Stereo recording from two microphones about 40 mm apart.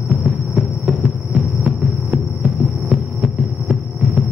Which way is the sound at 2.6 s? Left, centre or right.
Right.